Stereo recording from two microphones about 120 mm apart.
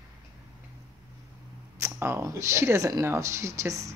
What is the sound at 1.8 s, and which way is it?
A woman's voice, 20° right (ahead or behind).